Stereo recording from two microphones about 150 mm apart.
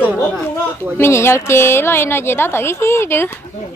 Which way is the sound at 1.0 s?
15° left (ahead or behind).